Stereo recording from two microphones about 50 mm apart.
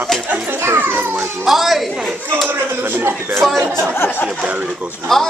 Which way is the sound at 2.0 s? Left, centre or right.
Centre.